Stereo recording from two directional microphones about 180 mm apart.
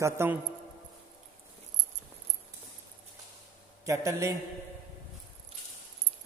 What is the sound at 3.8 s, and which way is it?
Speech, 15° right (ahead or behind).